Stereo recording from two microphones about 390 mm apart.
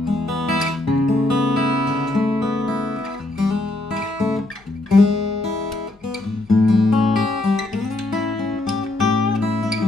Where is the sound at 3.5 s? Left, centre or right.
Left.